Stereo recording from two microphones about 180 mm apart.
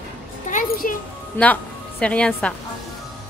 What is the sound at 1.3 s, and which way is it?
A woman's voice, 10° left (ahead or behind).